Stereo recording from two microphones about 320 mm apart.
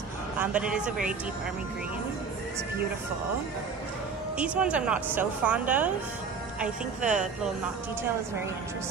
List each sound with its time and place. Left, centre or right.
0.4 s a woman's voice: centre
4.4 s a woman's voice: centre